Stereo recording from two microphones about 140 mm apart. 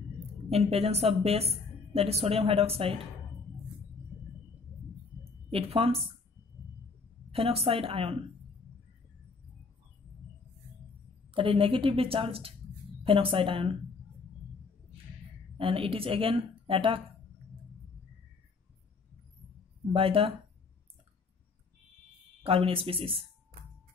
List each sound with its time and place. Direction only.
0.5 s a woman's voice: 45° right (ahead or behind)
5.5 s a woman's voice: 40° right (ahead or behind)
7.2 s a woman's voice: 45° right (ahead or behind)
11.3 s a woman's voice: 40° right (ahead or behind)
15.5 s speech: 40° right (ahead or behind)
19.9 s a woman's voice: 40° right (ahead or behind)
22.4 s a woman's voice: 45° right (ahead or behind)